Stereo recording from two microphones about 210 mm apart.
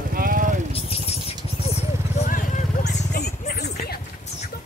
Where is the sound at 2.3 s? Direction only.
40° left (ahead or behind).